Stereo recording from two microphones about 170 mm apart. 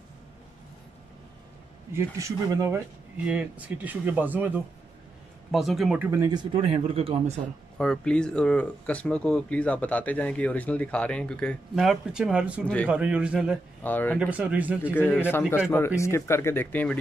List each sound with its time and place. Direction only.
2.0 s speech: 20° right (ahead or behind)
3.3 s speech: 5° right (ahead or behind)
5.5 s speech: centre (ahead or behind); by 7.4 s 35° right (ahead or behind)
7.7 s speech: 5° left (ahead or behind)
12.6 s speech: 5° left (ahead or behind)
12.9 s speech: 5° right (ahead or behind)
13.8 s speech: 10° left (ahead or behind)
14.1 s speech: 5° right (ahead or behind)
15.0 s speech: 10° left (ahead or behind)